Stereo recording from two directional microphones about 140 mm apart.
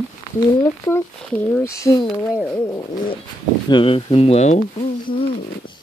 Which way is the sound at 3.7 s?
35° left (ahead or behind).